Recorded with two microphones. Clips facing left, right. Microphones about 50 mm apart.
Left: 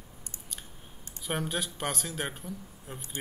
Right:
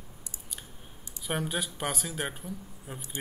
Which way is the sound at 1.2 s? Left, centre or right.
Centre.